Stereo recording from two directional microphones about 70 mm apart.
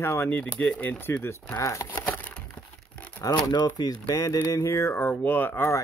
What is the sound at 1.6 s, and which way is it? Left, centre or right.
Speech, left.